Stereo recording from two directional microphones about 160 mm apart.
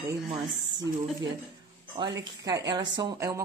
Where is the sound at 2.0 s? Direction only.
25° right (ahead or behind).